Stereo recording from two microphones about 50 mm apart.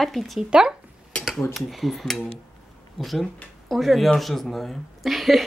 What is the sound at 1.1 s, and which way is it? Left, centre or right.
Mechanisms, left.